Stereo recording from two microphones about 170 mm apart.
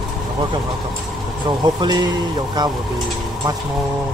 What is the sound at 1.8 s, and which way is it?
Speech, 25° right (ahead or behind).